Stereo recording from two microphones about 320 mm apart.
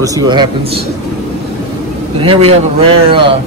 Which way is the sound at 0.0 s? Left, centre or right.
Centre.